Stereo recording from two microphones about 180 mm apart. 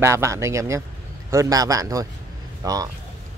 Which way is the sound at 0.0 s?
15° right (ahead or behind).